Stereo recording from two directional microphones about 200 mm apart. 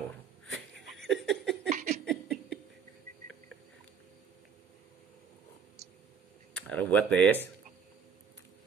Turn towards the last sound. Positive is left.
turn(degrees=10)  # may be behind; listen again after turning